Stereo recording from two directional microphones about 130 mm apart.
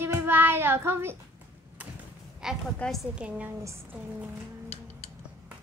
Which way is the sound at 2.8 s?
Centre (ahead or behind).